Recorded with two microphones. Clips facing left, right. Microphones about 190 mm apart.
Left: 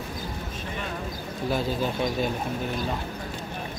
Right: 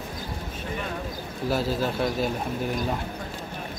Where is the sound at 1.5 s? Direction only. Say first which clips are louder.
Right 1 dB; 5° right (ahead or behind).